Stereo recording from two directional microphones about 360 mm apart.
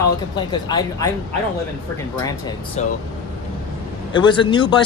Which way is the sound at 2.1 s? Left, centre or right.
Centre.